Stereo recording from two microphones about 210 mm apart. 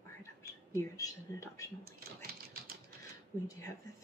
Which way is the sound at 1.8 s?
45° right (ahead or behind).